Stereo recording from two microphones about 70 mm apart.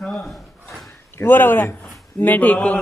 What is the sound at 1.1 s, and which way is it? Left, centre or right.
A man's voice, left.